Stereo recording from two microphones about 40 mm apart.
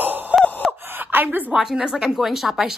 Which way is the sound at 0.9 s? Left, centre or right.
Right.